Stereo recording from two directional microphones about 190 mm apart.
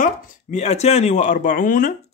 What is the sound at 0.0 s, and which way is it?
Speech, 35° left (ahead or behind).